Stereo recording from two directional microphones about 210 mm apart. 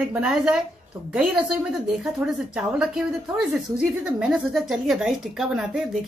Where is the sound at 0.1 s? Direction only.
5° right (ahead or behind).